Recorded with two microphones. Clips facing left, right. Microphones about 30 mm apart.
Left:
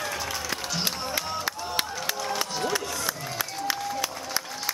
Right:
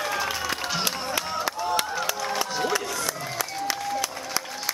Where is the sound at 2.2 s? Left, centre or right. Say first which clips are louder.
Right 2 dB; centre.